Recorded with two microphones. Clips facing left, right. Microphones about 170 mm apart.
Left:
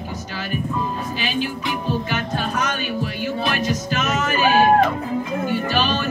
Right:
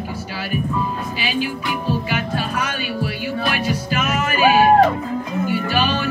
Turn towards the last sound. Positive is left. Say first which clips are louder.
# right 1 dB
turn(degrees=-10)  # may be behind; listen again after turning